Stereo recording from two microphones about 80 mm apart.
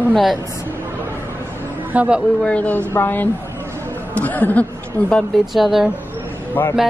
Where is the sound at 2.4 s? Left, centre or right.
Centre.